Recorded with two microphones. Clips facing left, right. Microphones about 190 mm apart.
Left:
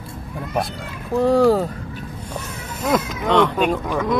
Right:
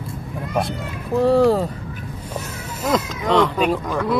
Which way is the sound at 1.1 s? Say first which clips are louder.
Even; centre (ahead or behind).